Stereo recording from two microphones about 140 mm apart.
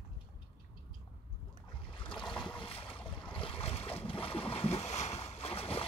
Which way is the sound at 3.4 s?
40° left (ahead or behind).